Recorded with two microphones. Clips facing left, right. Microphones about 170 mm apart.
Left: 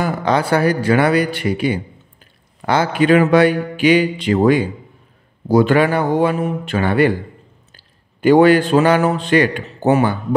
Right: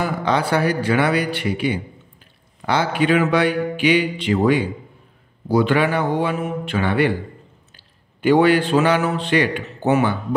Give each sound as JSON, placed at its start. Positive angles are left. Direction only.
{"t": 0.0, "sound": "a man's voice", "side_deg": 45}